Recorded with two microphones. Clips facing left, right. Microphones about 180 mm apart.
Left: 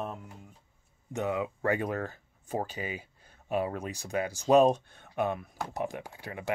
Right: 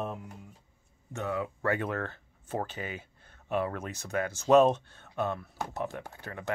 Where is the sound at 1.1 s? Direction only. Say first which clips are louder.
Left 2 dB; 20° left (ahead or behind).